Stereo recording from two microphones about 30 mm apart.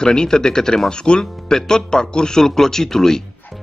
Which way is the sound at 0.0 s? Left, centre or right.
Left.